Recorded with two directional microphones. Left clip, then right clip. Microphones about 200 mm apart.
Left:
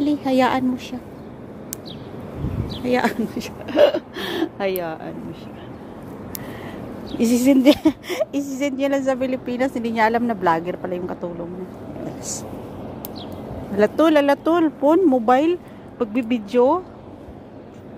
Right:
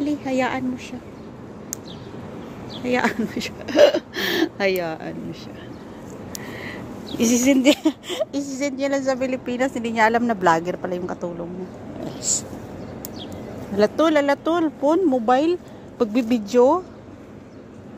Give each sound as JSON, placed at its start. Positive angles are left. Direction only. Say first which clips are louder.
{"t": 0.0, "sound": "a woman's voice", "louder": "left 4 dB", "side_deg": 15}
{"t": 2.8, "sound": "speech", "louder": "left 1 dB", "side_deg": 10}
{"t": 7.3, "sound": "speech", "louder": "left 2 dB", "side_deg": 10}
{"t": 13.7, "sound": "speech", "louder": "left 2 dB", "side_deg": 10}
{"t": 16.0, "sound": "speech", "louder": "right 2 dB", "side_deg": -10}